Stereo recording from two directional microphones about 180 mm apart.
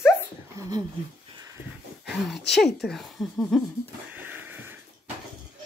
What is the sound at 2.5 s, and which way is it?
Speech, centre (ahead or behind).